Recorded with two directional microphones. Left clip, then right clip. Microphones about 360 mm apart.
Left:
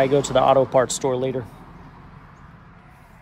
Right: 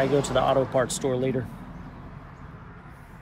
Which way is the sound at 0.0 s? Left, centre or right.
Centre.